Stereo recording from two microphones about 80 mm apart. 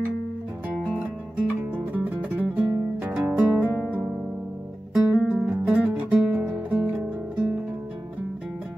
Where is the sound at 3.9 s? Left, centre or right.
Centre.